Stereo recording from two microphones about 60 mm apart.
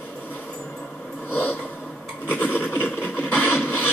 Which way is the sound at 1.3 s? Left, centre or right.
Left.